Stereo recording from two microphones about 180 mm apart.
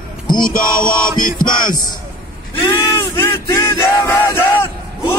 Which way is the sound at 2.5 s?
25° left (ahead or behind).